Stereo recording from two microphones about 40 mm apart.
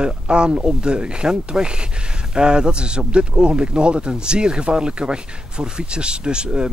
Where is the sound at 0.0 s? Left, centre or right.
Right.